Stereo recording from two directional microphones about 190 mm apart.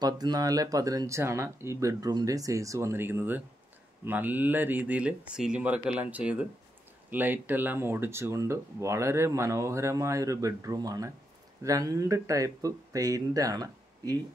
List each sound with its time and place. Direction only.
0.0 s speech: 20° right (ahead or behind)